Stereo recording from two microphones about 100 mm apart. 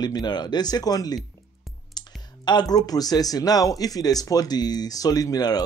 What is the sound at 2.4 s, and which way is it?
Speech, 45° left (ahead or behind).